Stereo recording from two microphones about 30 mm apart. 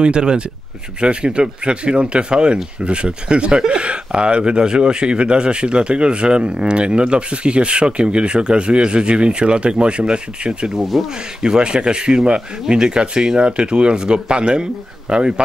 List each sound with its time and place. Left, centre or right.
0.0 s speech: right
10.9 s speech: centre
11.4 s speech: right